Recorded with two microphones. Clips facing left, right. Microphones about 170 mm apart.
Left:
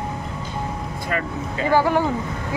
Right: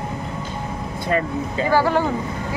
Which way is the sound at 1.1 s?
30° right (ahead or behind).